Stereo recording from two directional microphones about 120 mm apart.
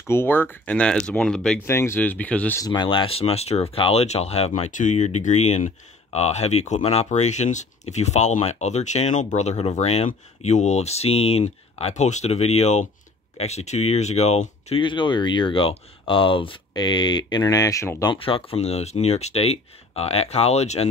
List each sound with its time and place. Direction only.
0.1 s speech: 20° left (ahead or behind)
1.7 s speech: 20° left (ahead or behind)
2.6 s speech: 40° left (ahead or behind); by 5.7 s 75° left (ahead or behind)
6.1 s speech: 65° left (ahead or behind)
14.8 s speech: 45° left (ahead or behind); by 18.1 s 25° left (ahead or behind)
18.1 s speech: 50° left (ahead or behind)